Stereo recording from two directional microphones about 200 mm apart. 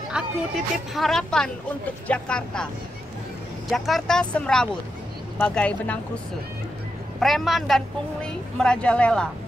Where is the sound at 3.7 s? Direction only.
Centre (ahead or behind).